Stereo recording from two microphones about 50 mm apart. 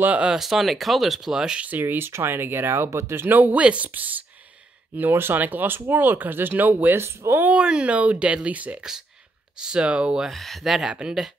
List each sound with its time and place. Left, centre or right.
0.0 s speech: right
0.3 s speech: centre
1.6 s speech: right
3.3 s speech: right
5.1 s speech: right
5.4 s speech: right
7.0 s speech: right
7.5 s speech: centre
9.6 s speech: centre
10.3 s speech: centre
10.6 s speech: centre